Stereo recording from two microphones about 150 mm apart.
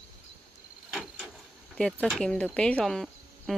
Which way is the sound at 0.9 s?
Centre (ahead or behind).